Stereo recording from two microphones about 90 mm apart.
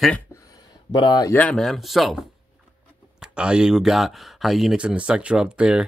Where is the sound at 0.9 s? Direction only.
50° left (ahead or behind).